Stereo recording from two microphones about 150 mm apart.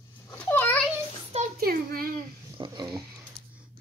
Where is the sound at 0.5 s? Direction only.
10° left (ahead or behind).